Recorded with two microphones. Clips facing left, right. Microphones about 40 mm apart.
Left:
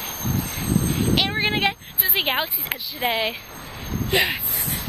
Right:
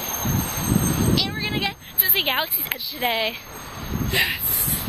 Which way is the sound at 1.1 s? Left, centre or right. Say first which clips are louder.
Left 3 dB; left.